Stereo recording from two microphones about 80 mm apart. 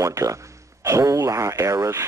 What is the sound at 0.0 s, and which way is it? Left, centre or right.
Speech, right.